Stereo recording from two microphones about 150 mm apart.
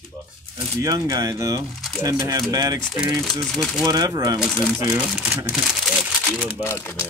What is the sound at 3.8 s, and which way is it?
Speech, 25° right (ahead or behind).